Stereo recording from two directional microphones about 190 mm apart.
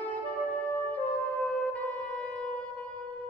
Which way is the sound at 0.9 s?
5° left (ahead or behind).